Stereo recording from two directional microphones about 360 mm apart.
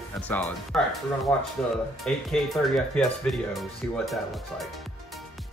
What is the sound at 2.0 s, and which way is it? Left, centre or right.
Speech, centre.